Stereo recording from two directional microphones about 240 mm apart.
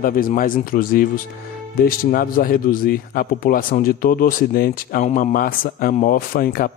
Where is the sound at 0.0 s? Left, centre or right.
Left.